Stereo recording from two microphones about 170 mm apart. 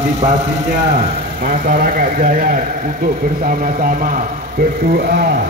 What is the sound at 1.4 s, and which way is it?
Speech, 55° right (ahead or behind).